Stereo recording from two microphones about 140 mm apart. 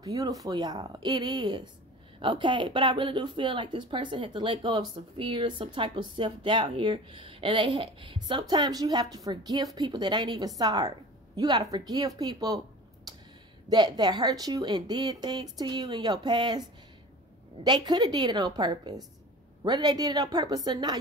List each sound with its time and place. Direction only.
0.0 s speech: 25° right (ahead or behind)
17.6 s speech: 30° right (ahead or behind)